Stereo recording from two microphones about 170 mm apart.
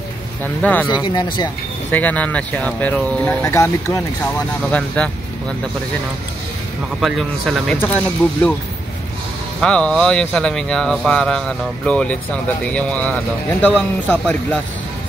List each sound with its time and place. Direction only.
0.4 s speech: 10° left (ahead or behind)
1.0 s speech: 25° left (ahead or behind)
1.9 s speech: 10° left (ahead or behind)
4.7 s speech: 5° left (ahead or behind)
7.0 s speech: centre (ahead or behind)
7.7 s speech: 10° left (ahead or behind)
9.6 s speech: 5° left (ahead or behind)